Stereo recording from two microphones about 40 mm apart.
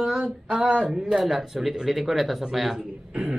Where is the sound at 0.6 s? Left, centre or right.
Right.